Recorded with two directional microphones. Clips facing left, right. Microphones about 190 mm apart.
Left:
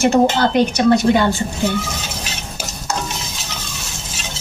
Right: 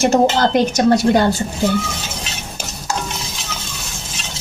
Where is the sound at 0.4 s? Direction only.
40° right (ahead or behind).